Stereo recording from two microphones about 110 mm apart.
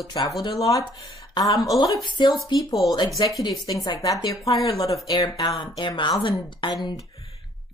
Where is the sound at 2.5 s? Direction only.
Centre (ahead or behind).